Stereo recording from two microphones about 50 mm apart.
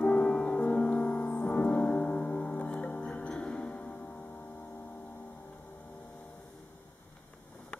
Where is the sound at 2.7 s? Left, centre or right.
Left.